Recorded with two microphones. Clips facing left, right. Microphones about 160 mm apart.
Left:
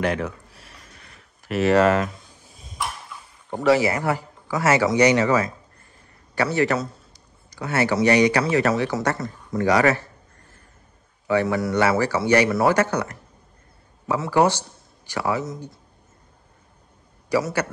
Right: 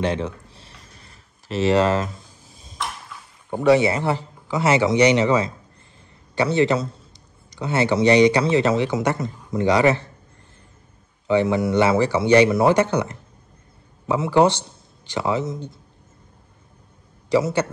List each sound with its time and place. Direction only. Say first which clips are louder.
0.0 s a sound: right 1 dB; 25° right (ahead or behind)
3.4 s speech: right 2 dB; 15° right (ahead or behind)
11.2 s speech: right 2 dB; 20° right (ahead or behind)
17.3 s speech: right 3 dB; 25° right (ahead or behind)